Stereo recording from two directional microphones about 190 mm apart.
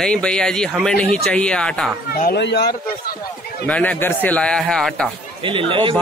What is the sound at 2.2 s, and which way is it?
Speech, 60° left (ahead or behind).